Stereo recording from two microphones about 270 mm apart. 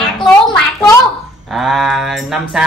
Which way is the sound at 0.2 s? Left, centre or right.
Centre.